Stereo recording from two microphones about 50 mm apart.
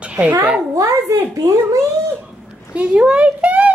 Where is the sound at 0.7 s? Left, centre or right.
Right.